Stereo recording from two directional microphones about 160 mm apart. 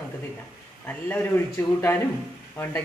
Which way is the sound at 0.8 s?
10° left (ahead or behind).